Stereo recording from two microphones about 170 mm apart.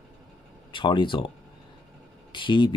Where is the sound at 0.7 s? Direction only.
30° left (ahead or behind).